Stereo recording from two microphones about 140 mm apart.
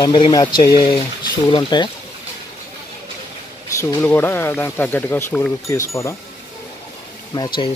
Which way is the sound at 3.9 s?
15° left (ahead or behind).